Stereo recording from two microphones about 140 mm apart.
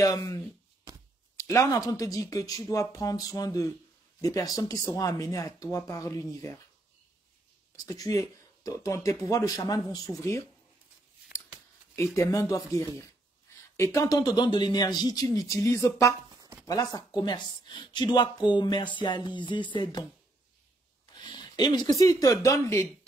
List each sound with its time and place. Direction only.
0.0 s speech: 25° left (ahead or behind)
7.7 s speech: 25° left (ahead or behind)
12.2 s speech: 25° left (ahead or behind)
21.1 s speech: 30° left (ahead or behind)